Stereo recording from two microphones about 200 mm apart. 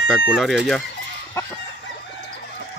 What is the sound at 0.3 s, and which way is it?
Speech, centre (ahead or behind).